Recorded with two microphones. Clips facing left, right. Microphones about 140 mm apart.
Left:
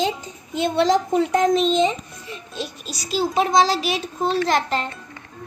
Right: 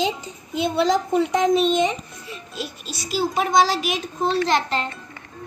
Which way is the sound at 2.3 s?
5° right (ahead or behind).